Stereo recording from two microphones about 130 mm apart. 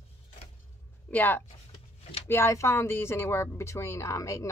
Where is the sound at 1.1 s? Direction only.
15° left (ahead or behind).